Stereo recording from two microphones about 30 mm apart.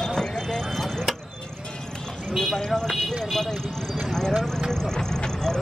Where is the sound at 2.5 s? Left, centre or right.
Centre.